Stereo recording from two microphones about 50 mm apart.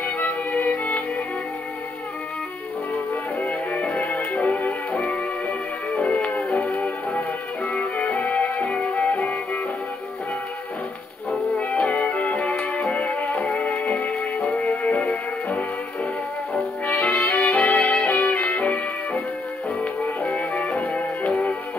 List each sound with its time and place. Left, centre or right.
0.0 s music: left
3.9 s music: left
11.5 s music: left
20.2 s music: centre
20.7 s music: left
21.3 s music: centre